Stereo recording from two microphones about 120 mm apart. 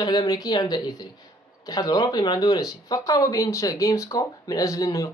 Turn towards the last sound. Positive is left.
turn(degrees=30)  # may be behind; listen again after turning